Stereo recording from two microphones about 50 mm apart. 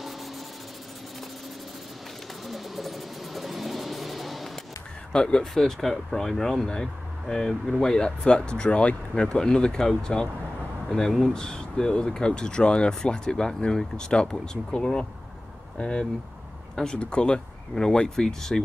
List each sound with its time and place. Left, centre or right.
2.4 s vehicle: centre
5.1 s speech: centre
5.5 s speech: centre